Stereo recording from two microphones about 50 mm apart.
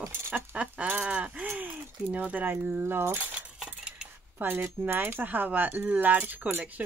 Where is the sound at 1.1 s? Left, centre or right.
Right.